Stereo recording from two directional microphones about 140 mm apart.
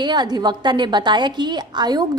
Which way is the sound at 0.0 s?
30° right (ahead or behind).